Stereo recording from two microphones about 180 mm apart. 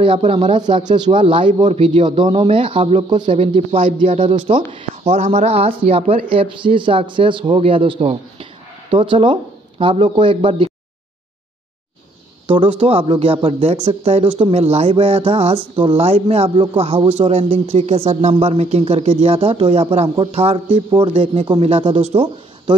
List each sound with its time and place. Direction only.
0.0 s speech: 30° right (ahead or behind)
12.4 s speech: 30° right (ahead or behind)